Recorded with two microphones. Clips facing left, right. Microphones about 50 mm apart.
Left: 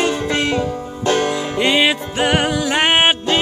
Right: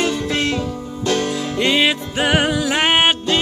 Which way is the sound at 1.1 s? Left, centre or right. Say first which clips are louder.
Left 3 dB; left.